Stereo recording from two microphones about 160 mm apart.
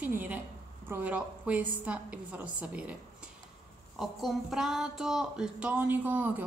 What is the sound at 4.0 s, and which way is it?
Speech, centre (ahead or behind).